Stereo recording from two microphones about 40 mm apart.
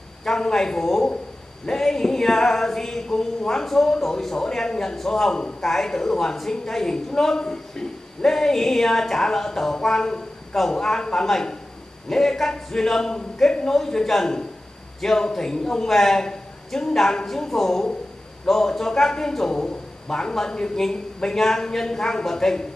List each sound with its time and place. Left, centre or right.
0.2 s a woman's voice: centre